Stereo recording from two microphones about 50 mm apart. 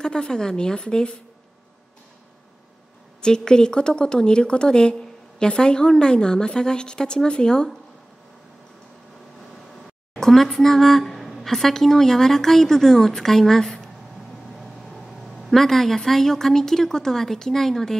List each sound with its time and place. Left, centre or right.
0.0 s a woman's voice: centre
3.2 s a woman's voice: centre
10.1 s a woman's voice: centre
15.3 s a woman's voice: centre